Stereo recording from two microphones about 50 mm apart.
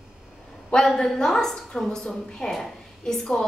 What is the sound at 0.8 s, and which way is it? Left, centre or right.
A woman's voice, centre.